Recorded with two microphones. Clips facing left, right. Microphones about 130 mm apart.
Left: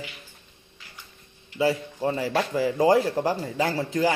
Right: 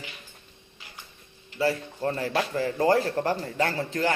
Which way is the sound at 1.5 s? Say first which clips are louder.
Left 2 dB; 15° left (ahead or behind).